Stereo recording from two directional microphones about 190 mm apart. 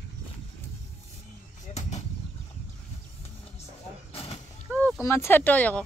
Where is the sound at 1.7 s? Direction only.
40° left (ahead or behind).